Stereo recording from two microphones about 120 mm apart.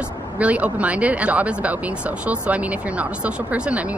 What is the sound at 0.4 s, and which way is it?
Speech, 10° right (ahead or behind).